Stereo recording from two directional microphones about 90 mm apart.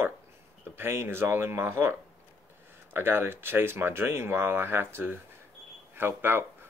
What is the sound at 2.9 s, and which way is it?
Speech, 25° right (ahead or behind).